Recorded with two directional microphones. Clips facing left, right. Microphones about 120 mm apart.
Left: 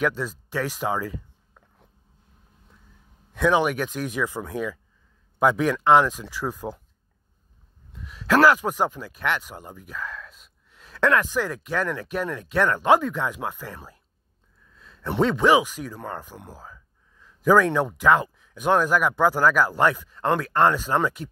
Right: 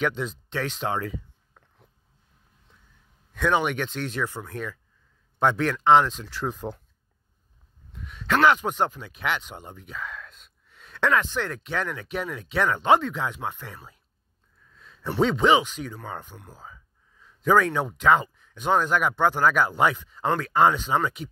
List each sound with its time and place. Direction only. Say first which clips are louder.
0.0 s speech: left 2 dB; centre (ahead or behind)
3.3 s speech: left 3 dB; 5° left (ahead or behind)
5.4 s speech: left 2 dB; 5° left (ahead or behind)
8.0 s speech: left 3 dB; centre (ahead or behind)
14.8 s speech: left 1 dB; centre (ahead or behind)